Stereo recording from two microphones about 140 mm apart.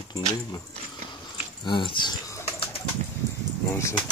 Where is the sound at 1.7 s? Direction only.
35° left (ahead or behind).